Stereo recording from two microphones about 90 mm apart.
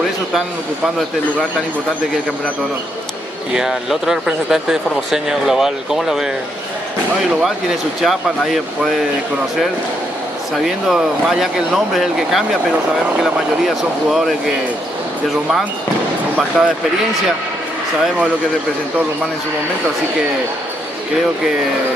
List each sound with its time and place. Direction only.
3.5 s speech: 5° right (ahead or behind)
8.0 s speech: centre (ahead or behind)
10.6 s speech: centre (ahead or behind)
16.6 s speech: 5° right (ahead or behind)